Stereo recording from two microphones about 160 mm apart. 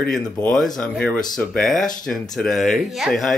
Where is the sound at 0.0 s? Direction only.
5° left (ahead or behind).